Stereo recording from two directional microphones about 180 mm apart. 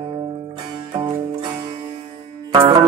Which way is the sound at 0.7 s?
20° right (ahead or behind).